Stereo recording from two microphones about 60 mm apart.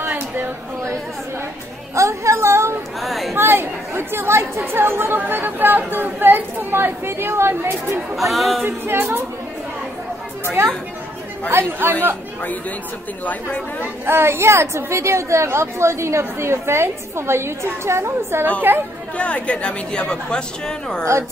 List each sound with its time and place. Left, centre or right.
0.0 s a sound: right
2.0 s a sound: right
3.0 s a sound: centre
3.3 s speech: right
8.2 s speech: centre
8.6 s speech: right
10.6 s a woman's voice: right
11.5 s speech: right
13.2 s speech: left
14.0 s a woman's voice: right
19.1 s speech: left